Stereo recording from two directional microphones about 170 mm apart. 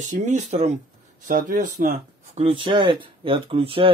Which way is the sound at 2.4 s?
30° right (ahead or behind).